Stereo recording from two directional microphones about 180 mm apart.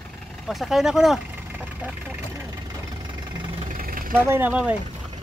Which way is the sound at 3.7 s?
50° right (ahead or behind).